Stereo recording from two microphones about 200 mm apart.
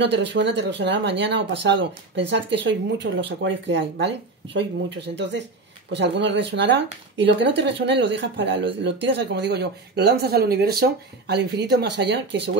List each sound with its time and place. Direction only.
0.0 s speech: 60° right (ahead or behind)